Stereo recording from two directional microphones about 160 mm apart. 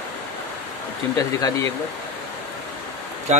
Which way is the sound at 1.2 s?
20° left (ahead or behind).